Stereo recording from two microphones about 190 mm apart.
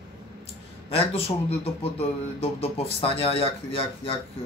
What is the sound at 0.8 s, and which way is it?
Speech, 30° left (ahead or behind).